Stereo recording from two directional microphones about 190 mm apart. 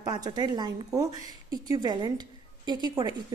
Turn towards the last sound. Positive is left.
turn(degrees=-25)  # may be behind; listen again after turning